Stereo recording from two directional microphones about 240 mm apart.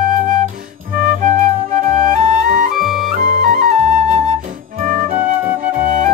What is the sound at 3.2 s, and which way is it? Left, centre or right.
Flute, right.